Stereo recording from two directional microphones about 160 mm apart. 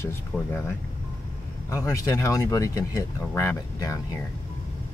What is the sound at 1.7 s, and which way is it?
Speech, 20° left (ahead or behind).